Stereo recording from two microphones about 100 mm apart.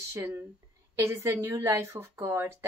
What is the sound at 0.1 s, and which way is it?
A woman's voice, 25° right (ahead or behind).